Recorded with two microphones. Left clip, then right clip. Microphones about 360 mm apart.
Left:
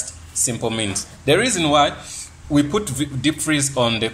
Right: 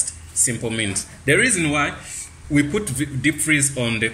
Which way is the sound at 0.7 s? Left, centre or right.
Centre.